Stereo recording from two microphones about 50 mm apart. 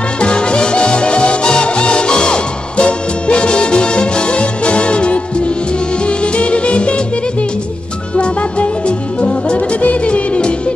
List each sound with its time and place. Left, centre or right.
0.2 s music: centre
8.2 s music: left